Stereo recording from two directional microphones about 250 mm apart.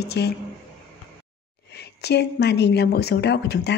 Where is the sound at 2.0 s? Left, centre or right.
Left.